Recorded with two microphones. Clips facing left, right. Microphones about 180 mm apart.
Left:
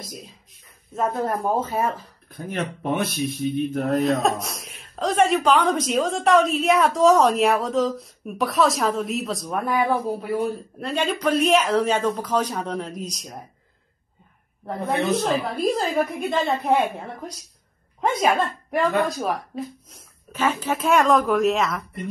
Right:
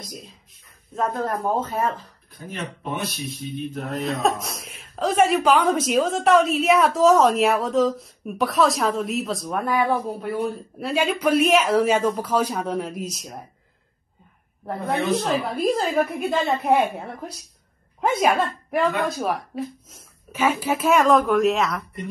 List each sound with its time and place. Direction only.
0.9 s speech: 10° left (ahead or behind)
2.3 s a man's voice: 55° left (ahead or behind)
3.8 s a man's voice: centre (ahead or behind)
15.5 s speech: 5° right (ahead or behind)